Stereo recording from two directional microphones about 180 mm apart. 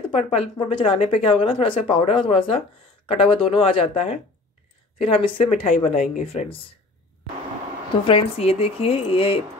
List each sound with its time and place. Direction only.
0.1 s a woman's voice: 30° left (ahead or behind)
8.1 s speech: 30° left (ahead or behind)